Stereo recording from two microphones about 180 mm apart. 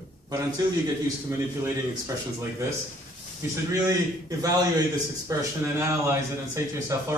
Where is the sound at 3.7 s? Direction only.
20° right (ahead or behind).